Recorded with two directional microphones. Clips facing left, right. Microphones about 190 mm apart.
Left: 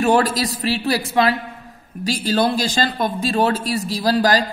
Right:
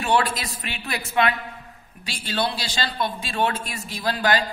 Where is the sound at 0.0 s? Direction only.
45° left (ahead or behind).